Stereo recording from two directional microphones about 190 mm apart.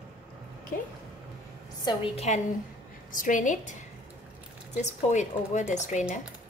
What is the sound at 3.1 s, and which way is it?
Speech, 45° left (ahead or behind).